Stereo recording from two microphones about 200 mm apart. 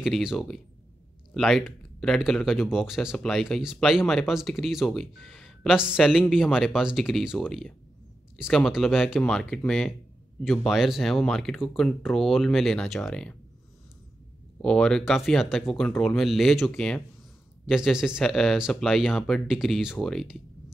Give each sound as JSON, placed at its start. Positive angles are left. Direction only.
{"t": 0.0, "sound": "speech", "side_deg": -5}
{"t": 14.6, "sound": "speech", "side_deg": 5}